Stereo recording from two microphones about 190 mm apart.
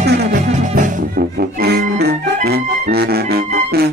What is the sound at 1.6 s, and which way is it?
Music, 55° right (ahead or behind).